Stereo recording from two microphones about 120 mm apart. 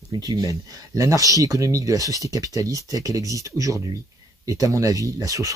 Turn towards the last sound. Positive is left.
turn(degrees=-30)  # may be behind; listen again after turning